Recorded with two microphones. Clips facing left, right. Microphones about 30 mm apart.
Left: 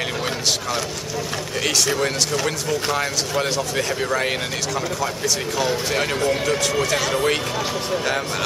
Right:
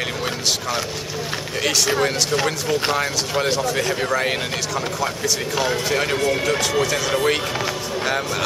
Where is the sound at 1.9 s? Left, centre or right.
Centre.